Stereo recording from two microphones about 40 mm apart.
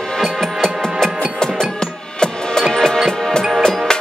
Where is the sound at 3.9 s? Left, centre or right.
Centre.